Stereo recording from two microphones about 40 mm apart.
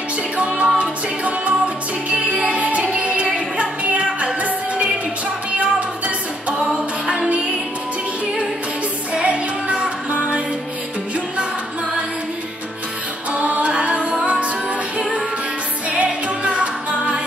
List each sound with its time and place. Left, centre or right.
0.4 s music: right
0.7 s a capella: right
2.0 s music: right
6.6 s a capella: right
9.1 s music: right
13.3 s music: right
15.9 s music: right